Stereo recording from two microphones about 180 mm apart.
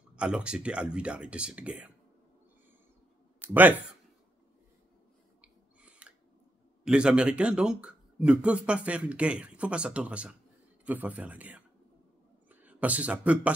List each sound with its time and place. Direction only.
0.1 s speech: 5° right (ahead or behind)
3.3 s speech: 10° right (ahead or behind)
5.4 s a sound: 5° right (ahead or behind)
6.8 s speech: 5° right (ahead or behind)